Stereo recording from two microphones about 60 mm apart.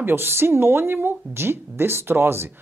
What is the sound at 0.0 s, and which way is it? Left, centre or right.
Speech, right.